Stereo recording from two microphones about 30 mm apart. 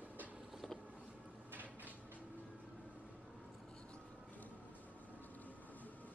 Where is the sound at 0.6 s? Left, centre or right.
Centre.